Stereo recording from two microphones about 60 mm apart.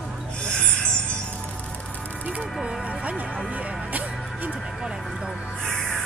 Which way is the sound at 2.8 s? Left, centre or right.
Right.